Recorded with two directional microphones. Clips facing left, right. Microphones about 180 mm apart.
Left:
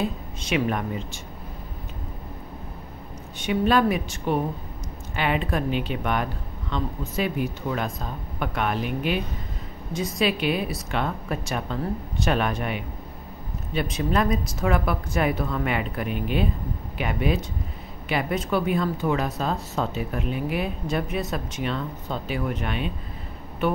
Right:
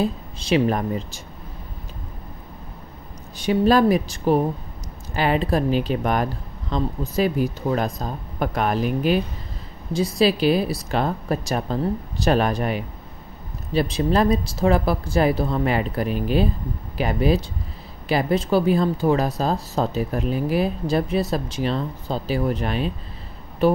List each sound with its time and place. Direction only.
0.0 s speech: 30° right (ahead or behind)
3.3 s speech: 35° right (ahead or behind)